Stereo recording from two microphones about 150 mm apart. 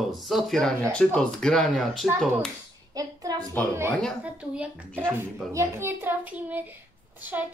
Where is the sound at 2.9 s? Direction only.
25° right (ahead or behind).